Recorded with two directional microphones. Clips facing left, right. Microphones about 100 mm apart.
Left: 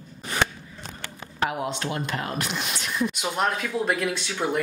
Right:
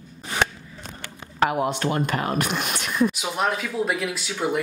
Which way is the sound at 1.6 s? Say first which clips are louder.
Right 5 dB; 55° right (ahead or behind).